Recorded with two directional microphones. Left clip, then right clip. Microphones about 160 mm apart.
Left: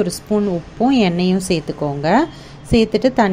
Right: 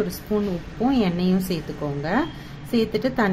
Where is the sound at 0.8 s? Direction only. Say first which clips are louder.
Left 6 dB; 35° left (ahead or behind).